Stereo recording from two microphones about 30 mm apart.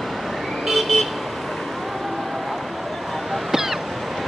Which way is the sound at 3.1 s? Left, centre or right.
Centre.